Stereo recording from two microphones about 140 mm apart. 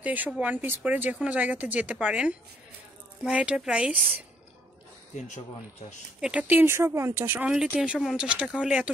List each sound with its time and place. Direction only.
0.0 s speech: 10° right (ahead or behind)
6.2 s speech: 10° right (ahead or behind)